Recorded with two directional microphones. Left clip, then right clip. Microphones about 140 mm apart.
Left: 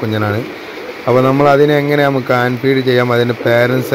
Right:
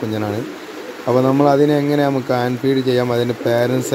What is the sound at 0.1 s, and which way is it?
Speech, 15° right (ahead or behind).